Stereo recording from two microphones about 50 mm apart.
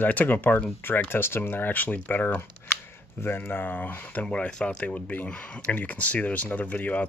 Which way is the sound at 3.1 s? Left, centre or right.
Left.